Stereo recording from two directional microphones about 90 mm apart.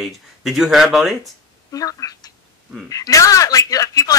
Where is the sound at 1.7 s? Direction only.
40° left (ahead or behind).